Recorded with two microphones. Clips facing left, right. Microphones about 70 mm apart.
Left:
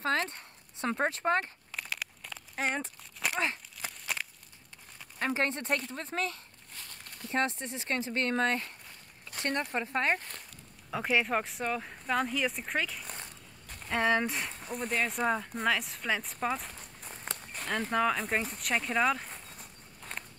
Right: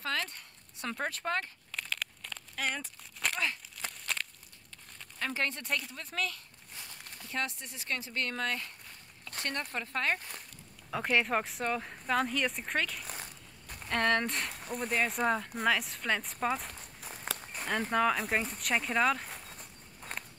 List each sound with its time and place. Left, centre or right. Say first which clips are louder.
0.0 s speech: left 5 dB; left
1.7 s a sound: even; centre
2.5 s speech: left 3 dB; left
3.0 s a sound: left 2 dB; centre
5.2 s speech: left 4 dB; left
10.9 s speech: even; centre
19.5 s walk: even; centre